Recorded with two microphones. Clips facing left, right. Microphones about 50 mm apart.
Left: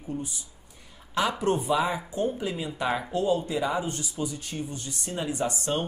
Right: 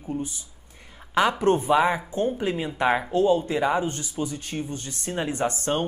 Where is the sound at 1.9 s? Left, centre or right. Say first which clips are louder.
Right 4 dB; right.